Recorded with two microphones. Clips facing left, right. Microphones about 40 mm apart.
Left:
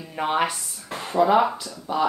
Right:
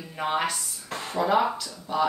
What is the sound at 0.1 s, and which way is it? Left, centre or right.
Speech, centre.